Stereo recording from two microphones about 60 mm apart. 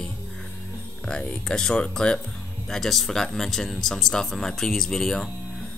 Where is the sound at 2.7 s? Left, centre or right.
Centre.